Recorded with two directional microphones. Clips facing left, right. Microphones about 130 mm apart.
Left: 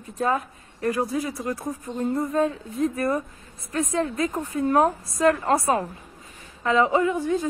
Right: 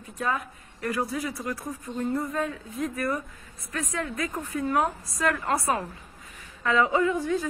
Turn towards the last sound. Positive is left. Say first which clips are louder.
# left 2 dB
turn(degrees=15)  # may be behind; listen again after turning